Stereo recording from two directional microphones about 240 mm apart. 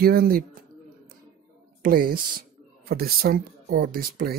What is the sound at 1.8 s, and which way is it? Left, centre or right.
Speech, right.